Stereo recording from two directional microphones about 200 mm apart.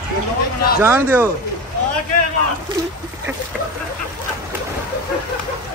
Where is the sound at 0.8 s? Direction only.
10° right (ahead or behind).